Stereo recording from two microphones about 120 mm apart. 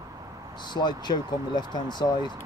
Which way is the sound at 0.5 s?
40° left (ahead or behind).